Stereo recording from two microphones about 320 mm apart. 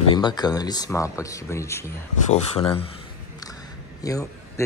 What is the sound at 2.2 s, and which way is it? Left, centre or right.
Speech, centre.